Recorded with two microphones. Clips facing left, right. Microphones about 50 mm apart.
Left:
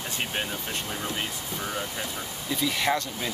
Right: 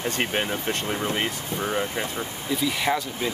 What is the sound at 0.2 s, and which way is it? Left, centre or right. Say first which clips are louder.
Speech: right 4 dB; right.